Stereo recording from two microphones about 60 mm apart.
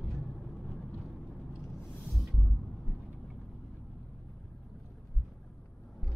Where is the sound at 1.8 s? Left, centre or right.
Left.